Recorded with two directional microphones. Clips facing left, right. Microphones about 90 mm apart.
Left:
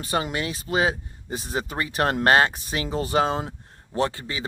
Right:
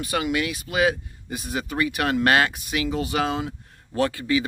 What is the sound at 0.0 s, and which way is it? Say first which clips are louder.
Speech: right 2 dB; 35° left (ahead or behind).